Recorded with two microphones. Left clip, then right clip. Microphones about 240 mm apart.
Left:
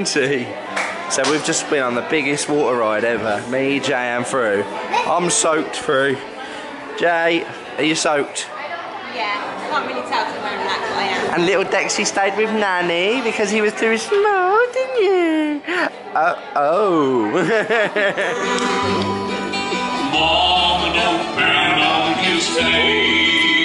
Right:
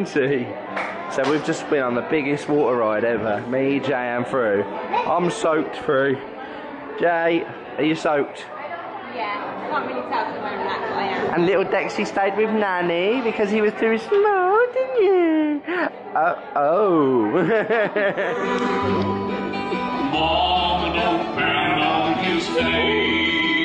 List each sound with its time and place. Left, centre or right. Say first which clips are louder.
0.0 s speech: left 3 dB; centre
10.6 s speech: left 3 dB; centre
14.8 s a sound: left 1 dB; centre
16.8 s speech: left 1 dB; right
17.2 s speech: left 2 dB; centre
19.2 s music: left 3 dB; centre